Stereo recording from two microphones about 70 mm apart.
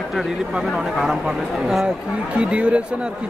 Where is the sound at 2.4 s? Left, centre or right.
Centre.